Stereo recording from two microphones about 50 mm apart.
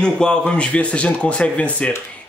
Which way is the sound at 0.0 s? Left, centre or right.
Centre.